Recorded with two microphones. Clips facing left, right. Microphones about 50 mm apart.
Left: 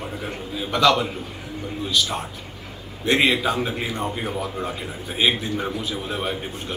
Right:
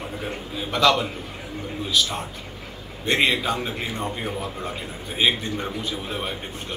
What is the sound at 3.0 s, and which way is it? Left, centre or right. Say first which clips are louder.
A man's voice: left 2 dB; centre.